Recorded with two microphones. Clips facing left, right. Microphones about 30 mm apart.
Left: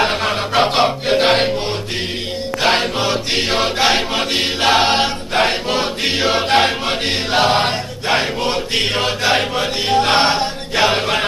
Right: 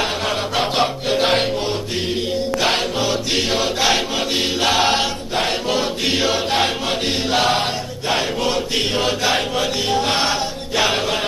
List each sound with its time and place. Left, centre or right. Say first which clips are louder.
3.3 s chant: left 2 dB; left
4.6 s choir: left 3 dB; left
6.3 s chant: left 4 dB; left
8.1 s chant: left 2 dB; left